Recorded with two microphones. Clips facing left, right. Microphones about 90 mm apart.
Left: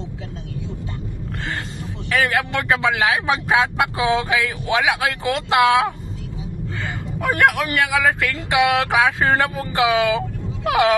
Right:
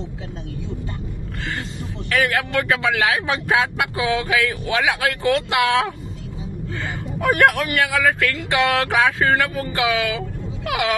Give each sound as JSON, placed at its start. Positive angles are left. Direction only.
{"t": 2.0, "sound": "speech", "side_deg": 15}
{"t": 7.6, "sound": "speech", "side_deg": 20}
{"t": 9.3, "sound": "speech", "side_deg": 25}